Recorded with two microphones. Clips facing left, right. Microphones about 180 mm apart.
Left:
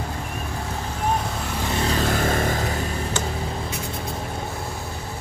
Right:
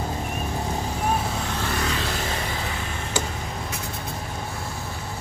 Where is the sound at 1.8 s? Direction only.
40° left (ahead or behind).